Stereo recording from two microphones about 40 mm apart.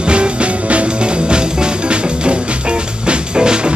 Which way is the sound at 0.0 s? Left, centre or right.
Right.